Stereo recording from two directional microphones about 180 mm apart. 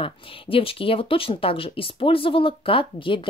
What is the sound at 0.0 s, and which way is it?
Speech, 30° left (ahead or behind).